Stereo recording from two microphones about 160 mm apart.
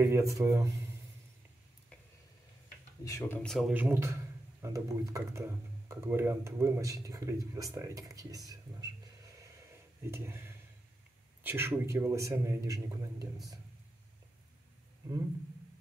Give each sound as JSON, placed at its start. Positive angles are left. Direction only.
{"t": 0.0, "sound": "speech", "side_deg": -20}
{"t": 3.1, "sound": "speech", "side_deg": 20}
{"t": 3.3, "sound": "speech", "side_deg": 0}
{"t": 10.1, "sound": "speech", "side_deg": -15}
{"t": 11.4, "sound": "speech", "side_deg": -15}